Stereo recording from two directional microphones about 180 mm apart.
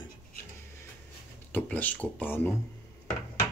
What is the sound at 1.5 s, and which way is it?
Speech, 10° left (ahead or behind).